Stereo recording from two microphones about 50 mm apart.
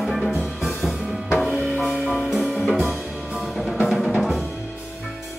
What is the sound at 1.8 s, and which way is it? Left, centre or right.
Music, centre.